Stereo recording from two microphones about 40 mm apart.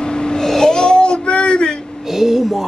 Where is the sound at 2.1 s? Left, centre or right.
Centre.